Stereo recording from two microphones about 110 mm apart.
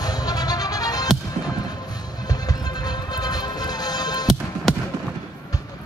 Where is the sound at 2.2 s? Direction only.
35° left (ahead or behind).